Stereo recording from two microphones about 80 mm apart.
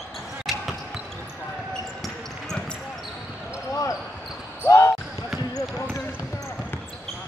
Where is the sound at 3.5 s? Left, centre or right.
Left.